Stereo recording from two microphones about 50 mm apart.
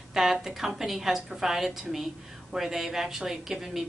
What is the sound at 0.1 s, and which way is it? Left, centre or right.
A woman's voice, centre.